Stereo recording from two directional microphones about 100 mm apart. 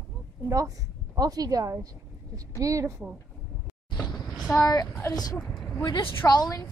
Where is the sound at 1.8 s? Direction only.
35° right (ahead or behind).